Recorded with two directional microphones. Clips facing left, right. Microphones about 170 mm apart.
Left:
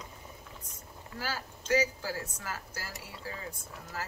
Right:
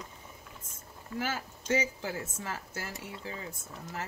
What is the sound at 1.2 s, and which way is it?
Speech, 25° right (ahead or behind).